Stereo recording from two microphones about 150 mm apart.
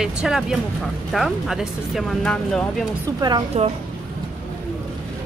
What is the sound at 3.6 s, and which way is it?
Speech, 45° right (ahead or behind).